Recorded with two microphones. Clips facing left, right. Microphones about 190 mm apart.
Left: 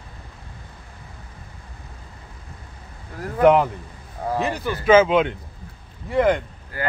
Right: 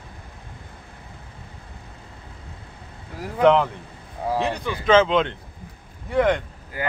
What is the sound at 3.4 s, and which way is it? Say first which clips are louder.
Speech: left 2 dB; 10° left (ahead or behind).